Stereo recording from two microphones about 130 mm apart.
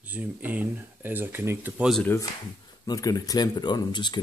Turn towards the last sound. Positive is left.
turn(degrees=35)  # may be behind; listen again after turning